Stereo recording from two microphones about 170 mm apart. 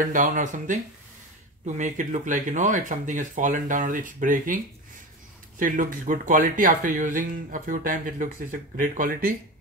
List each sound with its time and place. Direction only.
0.0 s speech: 50° right (ahead or behind)
1.8 s speech: 50° right (ahead or behind)
5.6 s speech: 50° right (ahead or behind)